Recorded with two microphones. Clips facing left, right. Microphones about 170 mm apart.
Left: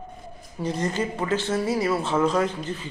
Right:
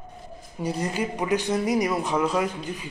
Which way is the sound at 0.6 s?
10° right (ahead or behind).